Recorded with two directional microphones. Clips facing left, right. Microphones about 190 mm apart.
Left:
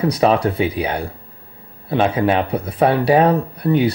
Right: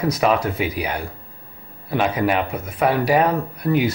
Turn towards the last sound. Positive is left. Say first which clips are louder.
# left 3 dB
turn(degrees=30)  # may be behind; listen again after turning